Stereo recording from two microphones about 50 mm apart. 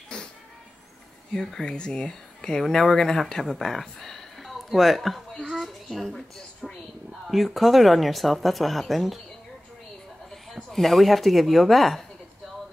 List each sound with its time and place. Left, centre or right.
0.1 s a sound: centre
1.3 s a child's voice: centre
10.3 s speech: centre